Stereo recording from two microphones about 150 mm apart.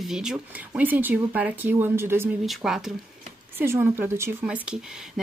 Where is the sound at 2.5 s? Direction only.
Centre (ahead or behind).